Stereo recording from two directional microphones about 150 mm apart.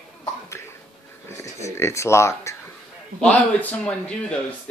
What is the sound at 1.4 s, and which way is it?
Speech, 20° left (ahead or behind).